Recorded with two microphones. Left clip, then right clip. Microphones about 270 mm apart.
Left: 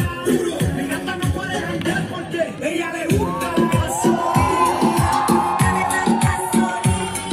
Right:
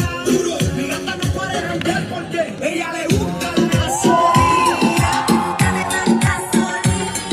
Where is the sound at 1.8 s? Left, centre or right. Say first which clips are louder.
Right 2 dB; centre.